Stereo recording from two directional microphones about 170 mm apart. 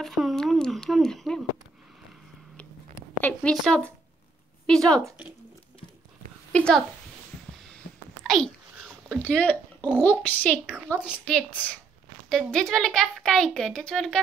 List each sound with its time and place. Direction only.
0.0 s a sound: centre (ahead or behind)
3.2 s a child's voice: 5° left (ahead or behind)
6.5 s speech: 5° left (ahead or behind)
7.8 s a sound: 70° left (ahead or behind)
8.2 s babbling: centre (ahead or behind)
9.8 s a child's voice: 10° left (ahead or behind)